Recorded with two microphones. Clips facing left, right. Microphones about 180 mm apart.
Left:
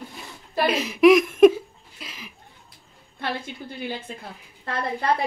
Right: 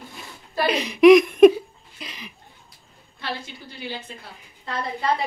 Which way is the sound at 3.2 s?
55° left (ahead or behind).